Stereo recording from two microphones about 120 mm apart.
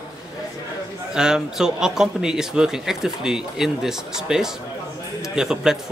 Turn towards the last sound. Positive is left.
turn(degrees=-5)  # may be behind; listen again after turning